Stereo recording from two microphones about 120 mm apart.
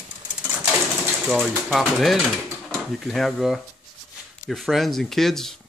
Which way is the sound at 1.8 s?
Centre (ahead or behind).